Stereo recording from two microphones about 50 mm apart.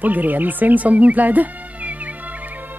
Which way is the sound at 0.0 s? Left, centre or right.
Right.